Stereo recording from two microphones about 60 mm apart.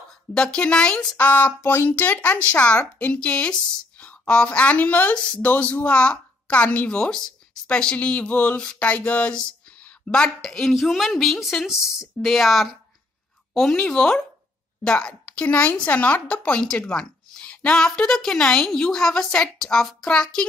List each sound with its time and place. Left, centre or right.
0.3 s a woman's voice: centre
1.1 s a woman's voice: left
1.6 s speech: left
1.9 s a woman's voice: left
10.4 s a woman's voice: centre
12.2 s a woman's voice: centre; by 16.6 s left
16.6 s a sound: centre
18.0 s a woman's voice: centre